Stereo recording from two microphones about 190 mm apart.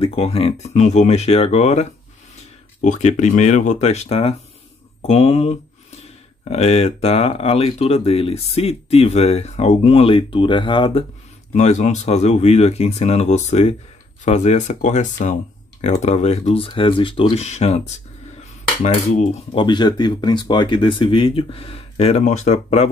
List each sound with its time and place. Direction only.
0.0 s speech: 30° left (ahead or behind)
11.5 s speech: 40° left (ahead or behind)
19.6 s speech: 25° left (ahead or behind)